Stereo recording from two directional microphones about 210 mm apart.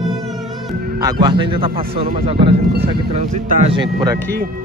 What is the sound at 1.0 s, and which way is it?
A man's voice, 20° right (ahead or behind).